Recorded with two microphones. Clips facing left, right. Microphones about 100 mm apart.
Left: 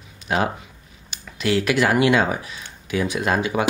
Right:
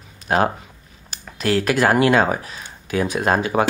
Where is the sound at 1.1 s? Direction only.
45° right (ahead or behind).